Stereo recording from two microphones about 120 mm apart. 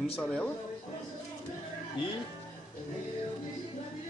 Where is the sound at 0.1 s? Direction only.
10° left (ahead or behind).